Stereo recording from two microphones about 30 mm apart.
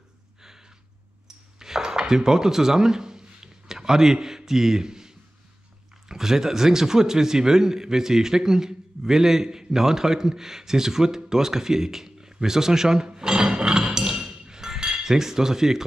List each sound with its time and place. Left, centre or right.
1.2 s cutlery: centre
6.0 s a man's voice: centre
13.5 s a sound: right
14.1 s cutlery: right